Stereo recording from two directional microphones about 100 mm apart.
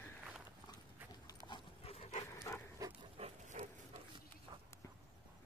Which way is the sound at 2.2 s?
35° left (ahead or behind).